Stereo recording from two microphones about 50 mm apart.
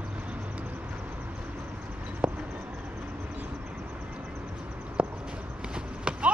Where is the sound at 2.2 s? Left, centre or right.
Centre.